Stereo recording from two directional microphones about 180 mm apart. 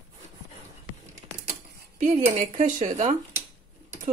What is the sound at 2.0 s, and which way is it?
Speech, 45° right (ahead or behind).